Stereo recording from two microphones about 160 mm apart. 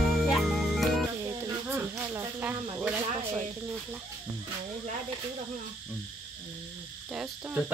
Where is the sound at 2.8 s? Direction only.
10° right (ahead or behind).